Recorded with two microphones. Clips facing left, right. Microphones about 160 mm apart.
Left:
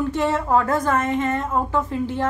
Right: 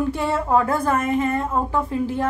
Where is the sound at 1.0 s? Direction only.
10° right (ahead or behind).